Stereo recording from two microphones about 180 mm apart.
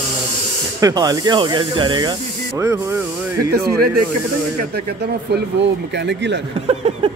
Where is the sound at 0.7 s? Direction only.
20° right (ahead or behind).